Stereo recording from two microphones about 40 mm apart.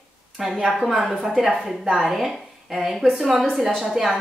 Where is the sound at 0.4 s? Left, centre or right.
Centre.